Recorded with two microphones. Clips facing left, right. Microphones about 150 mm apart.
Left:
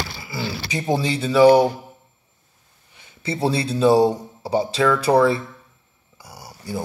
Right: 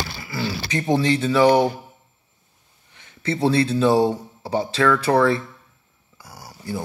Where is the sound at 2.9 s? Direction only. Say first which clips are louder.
Right 2 dB; 10° left (ahead or behind).